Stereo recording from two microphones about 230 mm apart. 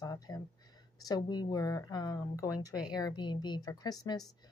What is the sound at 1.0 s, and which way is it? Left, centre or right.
A woman's voice, centre.